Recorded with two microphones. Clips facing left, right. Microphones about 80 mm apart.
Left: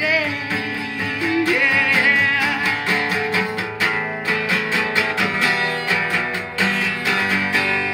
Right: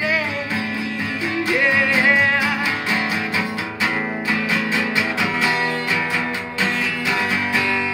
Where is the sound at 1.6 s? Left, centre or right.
Centre.